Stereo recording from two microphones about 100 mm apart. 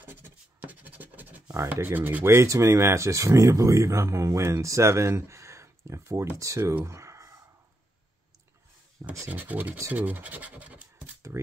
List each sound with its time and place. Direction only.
0.0 s scratch: 20° right (ahead or behind)
1.7 s speech: 20° right (ahead or behind)
6.7 s a sound: 25° right (ahead or behind)
9.3 s speech: 15° right (ahead or behind)